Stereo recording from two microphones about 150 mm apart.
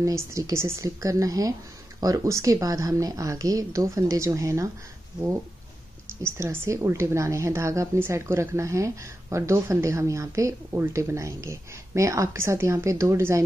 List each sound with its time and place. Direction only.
0.0 s a woman's voice: 20° right (ahead or behind)
6.2 s a woman's voice: 20° right (ahead or behind)